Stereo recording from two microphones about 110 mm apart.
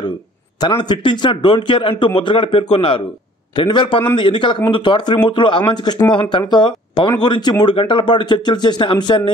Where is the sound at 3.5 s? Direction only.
45° left (ahead or behind).